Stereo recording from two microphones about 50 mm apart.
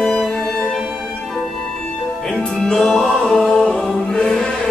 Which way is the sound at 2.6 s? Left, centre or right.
Centre.